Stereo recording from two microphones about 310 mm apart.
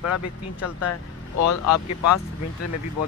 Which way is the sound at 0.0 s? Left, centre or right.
Left.